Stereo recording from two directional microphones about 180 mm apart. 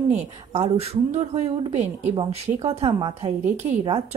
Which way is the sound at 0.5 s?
35° right (ahead or behind).